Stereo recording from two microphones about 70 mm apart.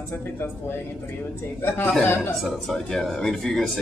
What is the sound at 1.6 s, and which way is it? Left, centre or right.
Speech, left.